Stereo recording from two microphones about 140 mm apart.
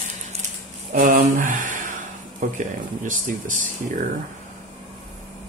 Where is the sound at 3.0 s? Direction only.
70° right (ahead or behind).